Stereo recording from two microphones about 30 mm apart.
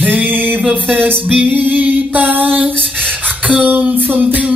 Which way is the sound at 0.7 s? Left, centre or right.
Right.